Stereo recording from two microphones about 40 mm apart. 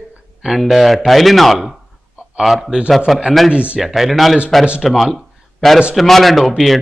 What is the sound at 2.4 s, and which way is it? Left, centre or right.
Speech, centre.